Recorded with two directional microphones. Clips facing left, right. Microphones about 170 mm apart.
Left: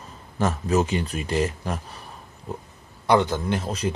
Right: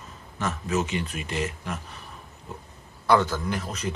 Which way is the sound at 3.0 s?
20° left (ahead or behind).